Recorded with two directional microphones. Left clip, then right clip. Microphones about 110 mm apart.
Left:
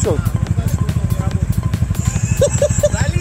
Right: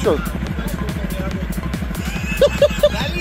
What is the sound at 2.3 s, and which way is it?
Horse, 25° left (ahead or behind).